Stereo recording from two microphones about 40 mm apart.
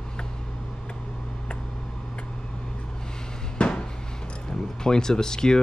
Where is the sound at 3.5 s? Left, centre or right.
Left.